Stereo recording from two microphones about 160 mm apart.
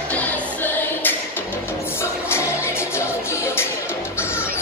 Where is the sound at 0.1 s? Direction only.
10° left (ahead or behind).